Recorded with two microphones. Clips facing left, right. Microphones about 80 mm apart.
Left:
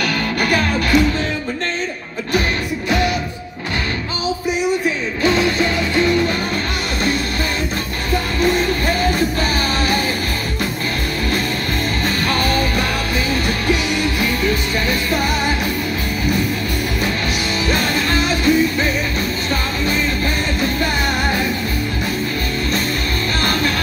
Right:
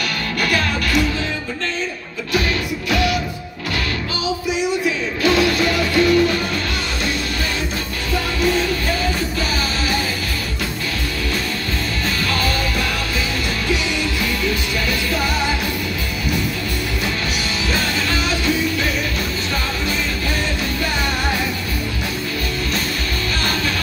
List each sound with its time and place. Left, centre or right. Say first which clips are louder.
0.4 s music: left 1 dB; left
5.2 s music: even; left
8.1 s music: left 2 dB; left
12.3 s music: left 5 dB; left
14.4 s music: left 3 dB; left
17.6 s music: left 3 dB; left